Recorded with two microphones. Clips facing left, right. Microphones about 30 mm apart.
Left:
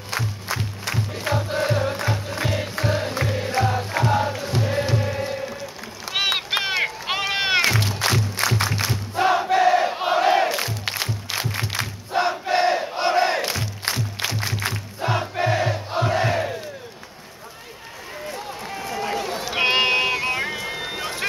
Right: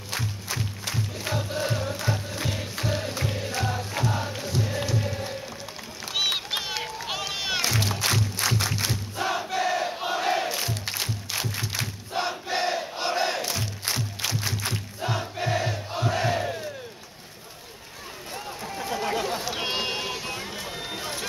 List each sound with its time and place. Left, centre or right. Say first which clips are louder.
0.1 s music: left 5 dB; left
1.6 s music: left 6 dB; left
6.0 s run: left 4 dB; left
6.8 s music: left 7 dB; left
8.4 s crowd: left 4 dB; left
14.2 s battle cry: left 5 dB; left
15.3 s crowd: left 5 dB; left
18.7 s run: left 1 dB; left
19.6 s music: left 14 dB; left